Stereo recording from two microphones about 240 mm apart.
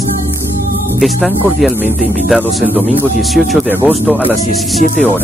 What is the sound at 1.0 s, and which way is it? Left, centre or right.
Speech, centre.